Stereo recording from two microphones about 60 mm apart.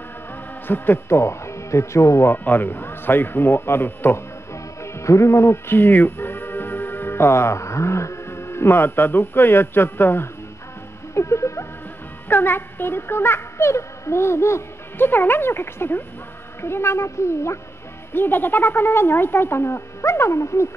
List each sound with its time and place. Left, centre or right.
0.7 s speech: left
2.3 s speech: left
4.8 s speech: left
11.1 s music: left
12.3 s speech: left
15.0 s speech: left
18.1 s speech: left